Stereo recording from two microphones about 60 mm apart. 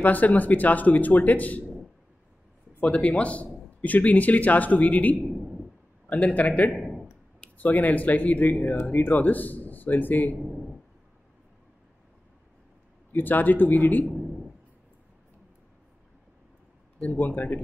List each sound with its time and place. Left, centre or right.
0.0 s a man's voice: left
2.8 s a man's voice: left
5.2 s a sound: centre
6.0 s a man's voice: left
6.7 s a sound: centre
7.5 s a man's voice: left
10.4 s a sound: centre
13.1 s a man's voice: left
17.0 s a man's voice: left